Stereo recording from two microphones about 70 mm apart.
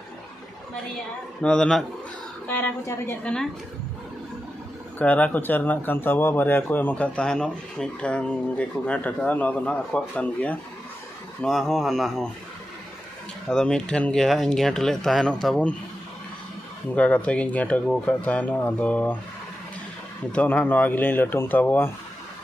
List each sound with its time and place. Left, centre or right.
1.4 s speech: centre
2.4 s speech: left
4.9 s speech: left
11.4 s speech: centre
13.5 s speech: centre
14.2 s speech: centre
16.9 s speech: centre
20.3 s speech: centre